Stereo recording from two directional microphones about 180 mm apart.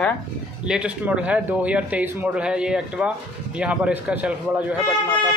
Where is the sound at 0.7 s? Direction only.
5° right (ahead or behind).